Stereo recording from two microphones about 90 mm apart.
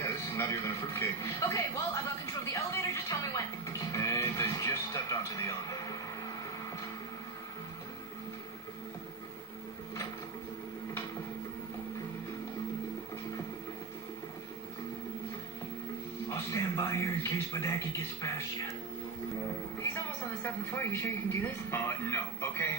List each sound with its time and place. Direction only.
0.0 s speech: 35° left (ahead or behind)
16.3 s speech: 30° left (ahead or behind)
20.4 s speech: 25° left (ahead or behind)